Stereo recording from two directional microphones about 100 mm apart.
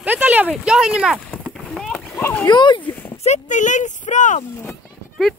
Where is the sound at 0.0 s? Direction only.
15° right (ahead or behind).